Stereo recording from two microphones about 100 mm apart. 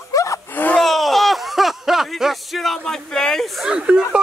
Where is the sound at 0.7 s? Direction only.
Centre (ahead or behind).